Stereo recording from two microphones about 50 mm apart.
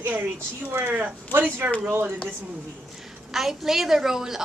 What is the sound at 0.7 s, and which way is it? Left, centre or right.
Speech, right.